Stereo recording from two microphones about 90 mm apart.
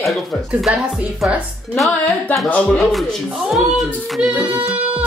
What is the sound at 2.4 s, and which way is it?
Speech, 15° left (ahead or behind).